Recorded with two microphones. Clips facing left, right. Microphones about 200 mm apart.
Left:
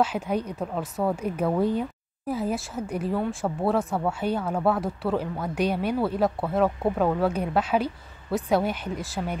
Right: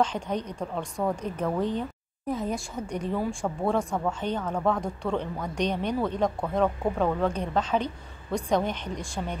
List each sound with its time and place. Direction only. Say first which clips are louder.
0.0 s a woman's voice: left 2 dB; 10° left (ahead or behind)